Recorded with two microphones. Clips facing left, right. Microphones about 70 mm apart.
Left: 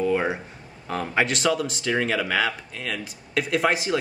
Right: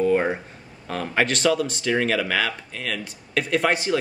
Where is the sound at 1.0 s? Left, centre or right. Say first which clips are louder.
Right 2 dB; centre.